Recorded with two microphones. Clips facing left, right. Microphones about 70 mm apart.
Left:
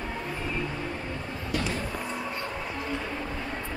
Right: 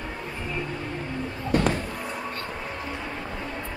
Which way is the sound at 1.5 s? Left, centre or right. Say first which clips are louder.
Right 8 dB; right.